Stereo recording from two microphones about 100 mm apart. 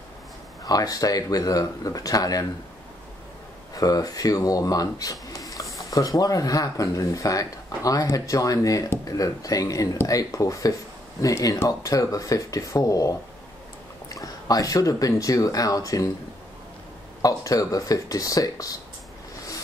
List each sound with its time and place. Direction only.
0.7 s speech: 40° left (ahead or behind)
3.7 s speech: 40° left (ahead or behind)
17.2 s speech: 35° left (ahead or behind)